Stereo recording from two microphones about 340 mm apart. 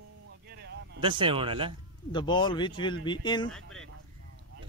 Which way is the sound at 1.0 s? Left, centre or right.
Centre.